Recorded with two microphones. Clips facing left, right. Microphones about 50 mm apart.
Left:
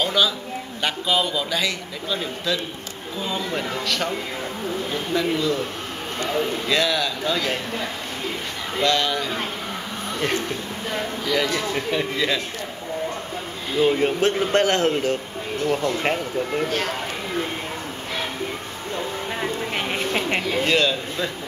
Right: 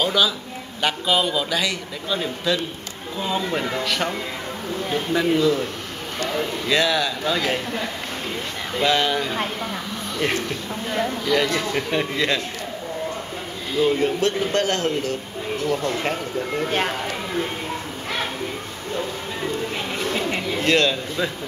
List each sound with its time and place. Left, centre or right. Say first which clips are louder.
0.0 s a sound: right 1 dB; centre
0.8 s a man's voice: right 2 dB; centre
6.7 s a man's voice: right 3 dB; centre
8.8 s speech: right 1 dB; centre
10.9 s a man's voice: right 3 dB; centre
13.7 s speech: even; centre
14.0 s speech: left 1 dB; left
19.7 s a sound: left 1 dB; left
20.6 s a man's voice: right 4 dB; centre